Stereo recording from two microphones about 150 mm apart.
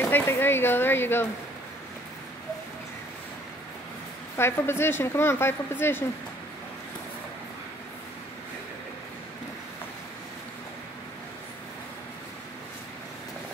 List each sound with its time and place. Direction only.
0.0 s a woman's voice: 15° left (ahead or behind)
4.4 s a woman's voice: 15° left (ahead or behind)